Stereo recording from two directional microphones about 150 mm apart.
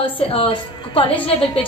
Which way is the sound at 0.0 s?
35° left (ahead or behind).